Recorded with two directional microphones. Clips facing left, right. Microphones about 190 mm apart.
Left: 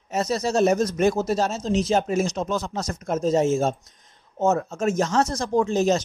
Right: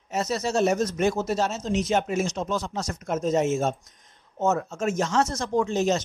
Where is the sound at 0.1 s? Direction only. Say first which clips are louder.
Left 3 dB; 35° left (ahead or behind).